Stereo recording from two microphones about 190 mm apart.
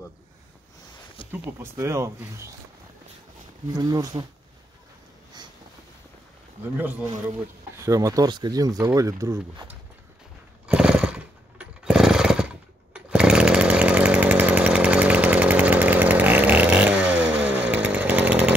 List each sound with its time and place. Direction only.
1.3 s speech: 15° right (ahead or behind)
3.7 s speech: 20° right (ahead or behind)
7.8 s speech: 15° right (ahead or behind)
10.7 s chainsaw: 5° right (ahead or behind)